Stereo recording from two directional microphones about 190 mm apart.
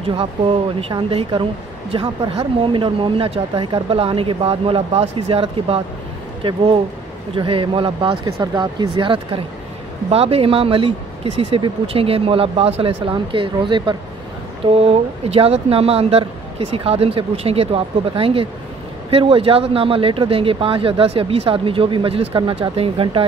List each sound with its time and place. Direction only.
0.7 s speech: 30° right (ahead or behind)
7.3 s speech: 25° right (ahead or behind)